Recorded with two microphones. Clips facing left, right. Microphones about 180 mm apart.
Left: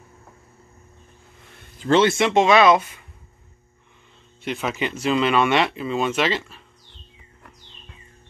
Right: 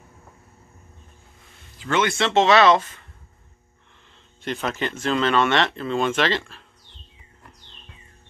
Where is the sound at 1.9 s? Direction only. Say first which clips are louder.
Left 6 dB; 30° left (ahead or behind).